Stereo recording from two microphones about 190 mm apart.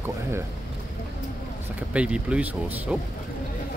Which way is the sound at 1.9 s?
5° right (ahead or behind).